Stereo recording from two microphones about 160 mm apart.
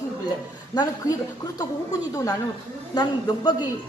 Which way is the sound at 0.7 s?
25° left (ahead or behind).